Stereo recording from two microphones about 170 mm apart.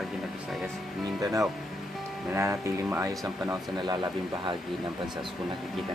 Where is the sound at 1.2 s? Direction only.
20° right (ahead or behind).